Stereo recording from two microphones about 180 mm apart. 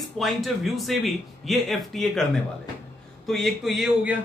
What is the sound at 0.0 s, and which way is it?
A man's voice, centre (ahead or behind).